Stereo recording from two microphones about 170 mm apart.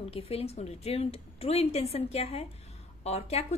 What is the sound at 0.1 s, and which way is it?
A woman's voice, 35° left (ahead or behind).